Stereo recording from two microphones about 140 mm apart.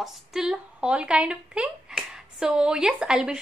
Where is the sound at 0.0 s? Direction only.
5° right (ahead or behind).